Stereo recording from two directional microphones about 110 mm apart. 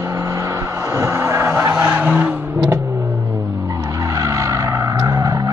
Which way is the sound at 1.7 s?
10° right (ahead or behind).